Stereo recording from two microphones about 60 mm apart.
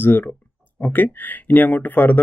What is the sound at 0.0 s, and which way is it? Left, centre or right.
Speech, left.